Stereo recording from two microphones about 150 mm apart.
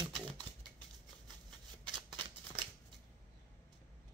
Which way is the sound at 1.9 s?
30° right (ahead or behind).